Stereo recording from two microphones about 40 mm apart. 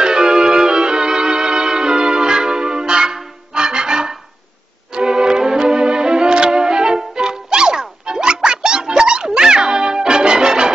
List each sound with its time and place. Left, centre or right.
0.0 s music: centre